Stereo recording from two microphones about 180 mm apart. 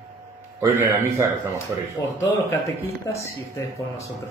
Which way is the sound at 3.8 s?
15° left (ahead or behind).